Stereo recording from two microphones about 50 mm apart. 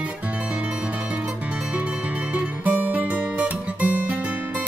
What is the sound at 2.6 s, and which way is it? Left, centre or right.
Music, right.